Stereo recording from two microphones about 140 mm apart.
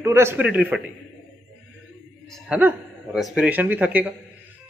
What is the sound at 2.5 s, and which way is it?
A man's voice, 10° right (ahead or behind).